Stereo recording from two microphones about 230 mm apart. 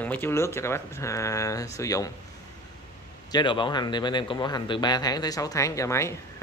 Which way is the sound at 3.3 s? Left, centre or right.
Centre.